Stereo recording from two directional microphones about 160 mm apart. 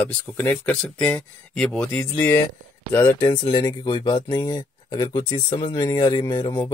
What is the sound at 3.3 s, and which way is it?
Speech, 30° left (ahead or behind).